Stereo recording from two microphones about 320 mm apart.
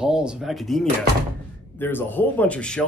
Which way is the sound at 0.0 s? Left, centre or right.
Centre.